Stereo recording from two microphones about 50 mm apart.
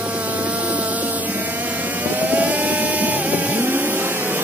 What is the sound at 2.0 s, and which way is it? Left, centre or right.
Vehicle, right.